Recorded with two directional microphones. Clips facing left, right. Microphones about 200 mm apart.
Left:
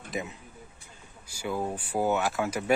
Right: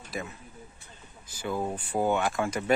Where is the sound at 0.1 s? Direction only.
20° left (ahead or behind).